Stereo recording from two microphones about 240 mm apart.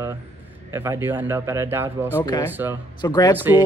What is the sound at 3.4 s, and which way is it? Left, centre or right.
Speech, centre.